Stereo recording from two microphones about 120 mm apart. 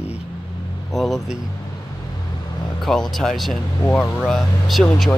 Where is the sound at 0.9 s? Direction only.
Centre (ahead or behind).